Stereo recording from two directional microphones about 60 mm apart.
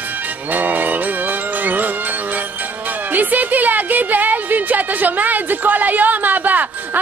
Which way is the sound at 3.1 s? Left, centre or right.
Right.